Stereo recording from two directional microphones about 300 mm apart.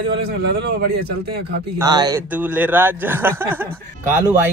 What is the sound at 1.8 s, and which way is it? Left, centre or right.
Speech, centre.